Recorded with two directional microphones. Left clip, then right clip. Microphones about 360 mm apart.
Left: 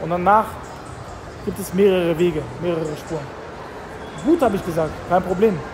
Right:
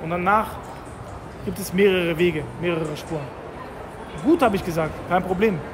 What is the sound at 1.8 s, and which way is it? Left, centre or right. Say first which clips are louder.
Speech: left 2 dB; centre.